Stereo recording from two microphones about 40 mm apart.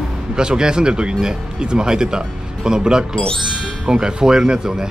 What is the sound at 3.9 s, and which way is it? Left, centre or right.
Speech, right.